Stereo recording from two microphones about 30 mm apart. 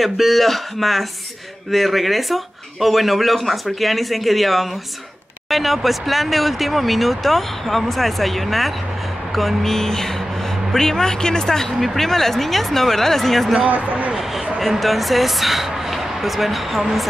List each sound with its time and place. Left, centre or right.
0.0 s speech: centre
9.6 s speech: centre
11.8 s speech: centre
13.7 s a man's voice: right
14.6 s speech: centre